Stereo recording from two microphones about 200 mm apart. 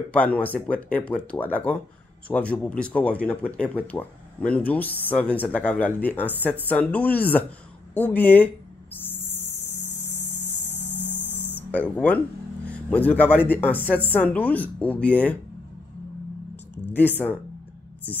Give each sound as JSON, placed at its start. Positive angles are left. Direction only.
{"t": 0.1, "sound": "speech", "side_deg": 10}
{"t": 8.9, "sound": "owl", "side_deg": 10}
{"t": 9.8, "sound": "vehicle", "side_deg": 35}
{"t": 10.8, "sound": "a sound", "side_deg": -10}
{"t": 11.7, "sound": "speech", "side_deg": 5}
{"t": 16.9, "sound": "speech", "side_deg": 10}